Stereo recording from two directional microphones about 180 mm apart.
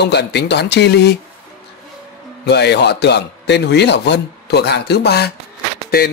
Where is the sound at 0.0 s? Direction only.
70° left (ahead or behind).